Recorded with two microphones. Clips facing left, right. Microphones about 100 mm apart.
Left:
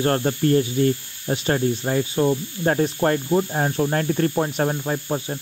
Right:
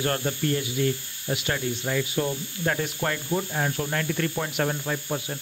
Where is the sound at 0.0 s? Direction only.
35° left (ahead or behind).